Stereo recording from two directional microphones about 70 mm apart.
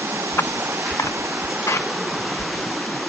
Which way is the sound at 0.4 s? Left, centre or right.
Left.